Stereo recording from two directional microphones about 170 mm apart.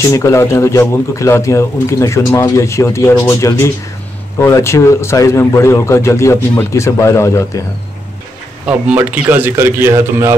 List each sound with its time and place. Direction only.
0.0 s speech: 20° left (ahead or behind)
8.6 s a man's voice: 10° right (ahead or behind)